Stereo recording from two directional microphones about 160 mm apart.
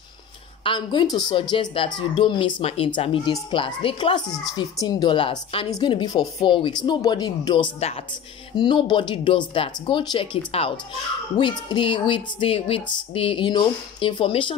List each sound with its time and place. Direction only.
0.7 s a woman's voice: 30° left (ahead or behind)